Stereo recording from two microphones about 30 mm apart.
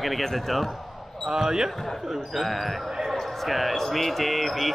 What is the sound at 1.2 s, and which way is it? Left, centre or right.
Speech, centre.